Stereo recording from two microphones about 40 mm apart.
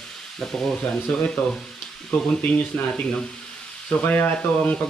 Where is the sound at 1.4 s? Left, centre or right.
Left.